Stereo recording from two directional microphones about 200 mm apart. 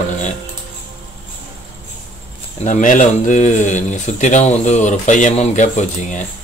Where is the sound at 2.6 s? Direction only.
40° left (ahead or behind).